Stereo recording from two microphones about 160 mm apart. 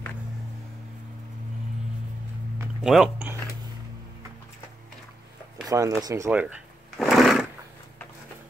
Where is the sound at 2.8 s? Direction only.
Centre (ahead or behind).